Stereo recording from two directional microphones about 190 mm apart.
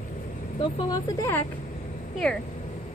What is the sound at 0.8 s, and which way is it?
Speech, 20° left (ahead or behind).